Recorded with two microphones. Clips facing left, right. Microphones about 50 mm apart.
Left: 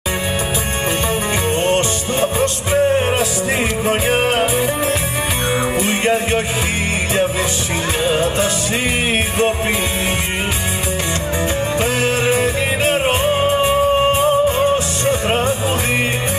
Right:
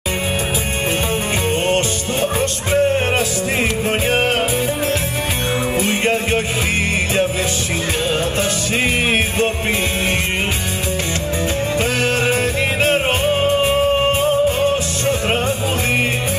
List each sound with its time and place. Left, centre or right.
1.5 s music: centre
2.7 s music: centre
4.3 s music: centre
5.8 s music: centre
8.1 s music: centre
11.8 s music: centre